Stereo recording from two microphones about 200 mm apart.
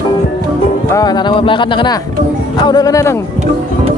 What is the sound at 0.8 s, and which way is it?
Music, 20° left (ahead or behind).